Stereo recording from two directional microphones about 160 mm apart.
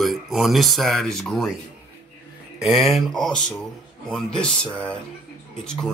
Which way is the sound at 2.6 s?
Centre (ahead or behind).